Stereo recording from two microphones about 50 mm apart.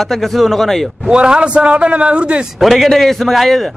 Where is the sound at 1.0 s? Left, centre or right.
Centre.